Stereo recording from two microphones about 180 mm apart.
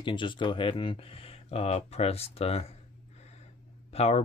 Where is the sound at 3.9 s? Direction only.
35° left (ahead or behind).